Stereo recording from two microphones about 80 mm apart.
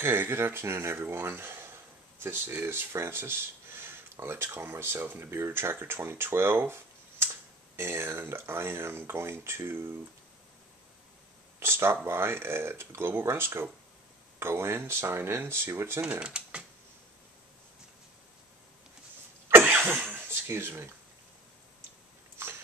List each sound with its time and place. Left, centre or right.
0.0 s speech: right
11.6 s speech: right
16.2 s speech: centre
19.8 s cough: right
22.4 s a sound: right